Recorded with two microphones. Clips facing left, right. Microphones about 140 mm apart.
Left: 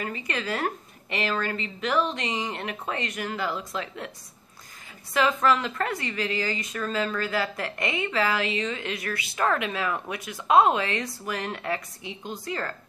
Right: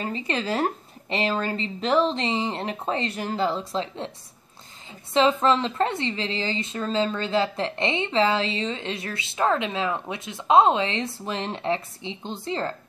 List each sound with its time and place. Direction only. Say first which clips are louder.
0.0 s speech: right 3 dB; 30° right (ahead or behind)
5.1 s speech: right 3 dB; 25° right (ahead or behind)